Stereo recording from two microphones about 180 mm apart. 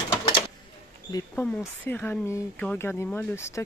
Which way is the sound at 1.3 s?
10° left (ahead or behind).